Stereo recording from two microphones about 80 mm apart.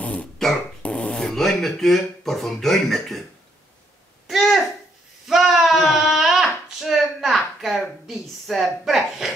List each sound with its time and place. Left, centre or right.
0.0 s dog: centre
0.8 s speech: centre
4.3 s babbling: centre
5.2 s a sound: centre
8.1 s a woman's voice: centre